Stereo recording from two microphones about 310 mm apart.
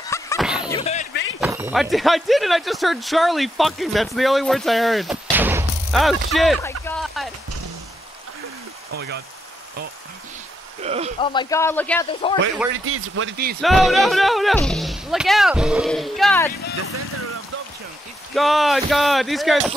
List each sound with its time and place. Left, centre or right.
0.4 s a sound: centre
0.7 s slam: centre
1.1 s a sound: left
1.4 s speech: centre
10.8 s speech: centre
11.1 s a man's voice: centre
12.1 s a man's voice: centre
12.8 s speech: right
13.6 s speech: centre
18.3 s speech: centre